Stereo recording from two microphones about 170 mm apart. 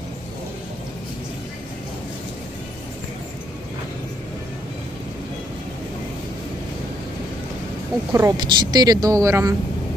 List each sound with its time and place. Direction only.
8.1 s a woman's voice: 20° right (ahead or behind)